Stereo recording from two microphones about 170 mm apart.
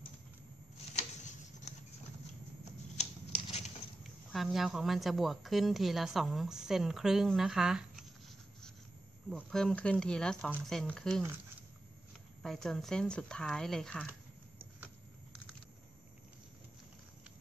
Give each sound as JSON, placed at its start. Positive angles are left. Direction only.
{"t": 3.0, "sound": "scissors", "side_deg": 40}
{"t": 4.3, "sound": "a woman's voice", "side_deg": 0}
{"t": 9.3, "sound": "a woman's voice", "side_deg": 5}
{"t": 12.4, "sound": "a woman's voice", "side_deg": 0}